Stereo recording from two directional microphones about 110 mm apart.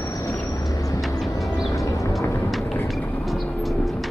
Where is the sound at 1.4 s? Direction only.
Centre (ahead or behind).